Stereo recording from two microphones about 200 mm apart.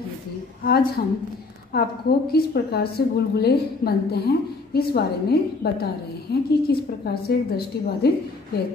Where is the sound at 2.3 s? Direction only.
50° left (ahead or behind).